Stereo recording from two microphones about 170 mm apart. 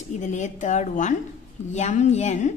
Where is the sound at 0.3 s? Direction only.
45° left (ahead or behind).